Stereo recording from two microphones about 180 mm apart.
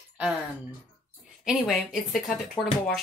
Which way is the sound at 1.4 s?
Centre (ahead or behind).